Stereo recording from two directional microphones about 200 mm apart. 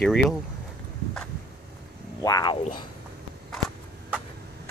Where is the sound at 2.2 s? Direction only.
20° left (ahead or behind).